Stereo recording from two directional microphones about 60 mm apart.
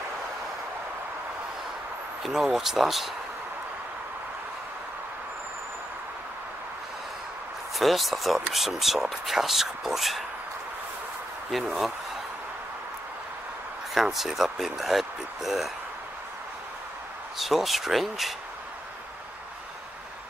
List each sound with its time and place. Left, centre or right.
2.2 s speech: centre
7.8 s speech: centre
11.5 s speech: centre
13.9 s speech: centre
17.4 s speech: centre